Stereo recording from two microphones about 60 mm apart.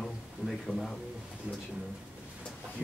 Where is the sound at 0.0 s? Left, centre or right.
Centre.